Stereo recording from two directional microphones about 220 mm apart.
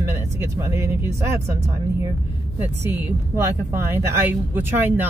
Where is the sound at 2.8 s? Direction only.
10° right (ahead or behind).